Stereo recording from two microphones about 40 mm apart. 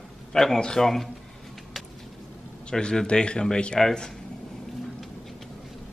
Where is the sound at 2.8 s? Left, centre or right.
Left.